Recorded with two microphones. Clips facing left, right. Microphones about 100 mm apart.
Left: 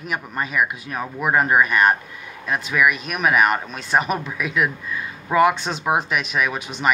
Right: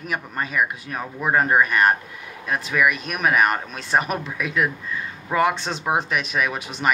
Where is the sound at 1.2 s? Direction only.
5° left (ahead or behind).